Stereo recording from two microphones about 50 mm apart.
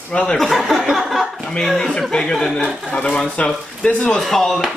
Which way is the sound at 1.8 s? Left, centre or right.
Centre.